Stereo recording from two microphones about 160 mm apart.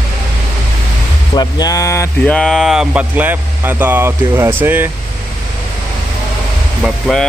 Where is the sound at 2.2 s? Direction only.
5° left (ahead or behind); by 4.8 s 15° right (ahead or behind).